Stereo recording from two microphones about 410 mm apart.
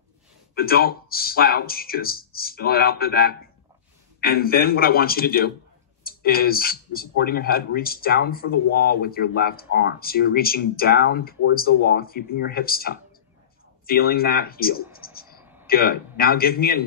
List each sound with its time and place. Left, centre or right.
0.6 s speech: left